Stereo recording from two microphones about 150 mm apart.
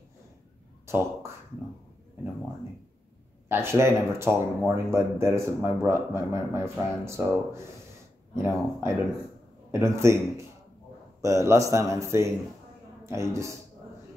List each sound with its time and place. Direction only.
0.8 s speech: 15° right (ahead or behind)
3.4 s speech: 15° right (ahead or behind)
11.1 s a man's voice: 20° right (ahead or behind)